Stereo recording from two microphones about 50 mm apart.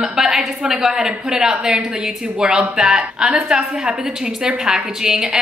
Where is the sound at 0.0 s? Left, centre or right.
Centre.